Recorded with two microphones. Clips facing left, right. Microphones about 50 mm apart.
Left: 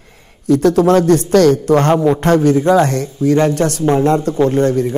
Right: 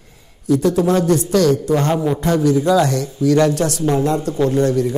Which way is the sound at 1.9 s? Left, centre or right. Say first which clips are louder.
Left 6 dB; left.